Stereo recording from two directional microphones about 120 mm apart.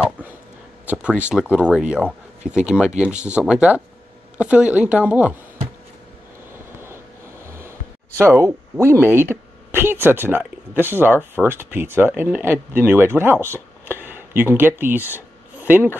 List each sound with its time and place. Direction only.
0.8 s speech: 10° right (ahead or behind)
7.4 s a sound: 20° right (ahead or behind)
8.2 s a woman's voice: 20° right (ahead or behind)